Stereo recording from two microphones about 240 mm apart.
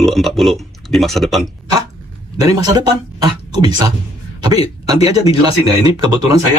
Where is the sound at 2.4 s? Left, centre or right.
Centre.